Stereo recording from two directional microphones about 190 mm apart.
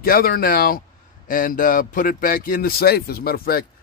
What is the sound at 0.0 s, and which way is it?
A man's voice, 50° left (ahead or behind).